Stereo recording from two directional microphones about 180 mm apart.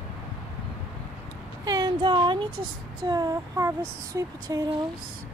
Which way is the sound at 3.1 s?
20° right (ahead or behind).